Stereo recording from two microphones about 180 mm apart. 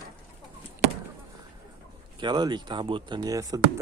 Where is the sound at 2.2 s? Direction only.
25° right (ahead or behind).